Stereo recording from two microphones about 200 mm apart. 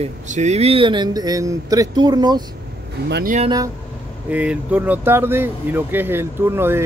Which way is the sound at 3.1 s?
55° right (ahead or behind).